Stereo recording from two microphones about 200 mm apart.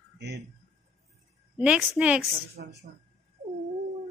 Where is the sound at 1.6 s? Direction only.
5° right (ahead or behind).